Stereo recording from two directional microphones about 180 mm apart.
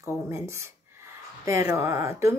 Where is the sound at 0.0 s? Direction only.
15° right (ahead or behind).